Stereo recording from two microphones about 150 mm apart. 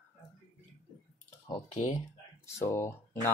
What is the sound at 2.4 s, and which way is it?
Speech, 20° left (ahead or behind).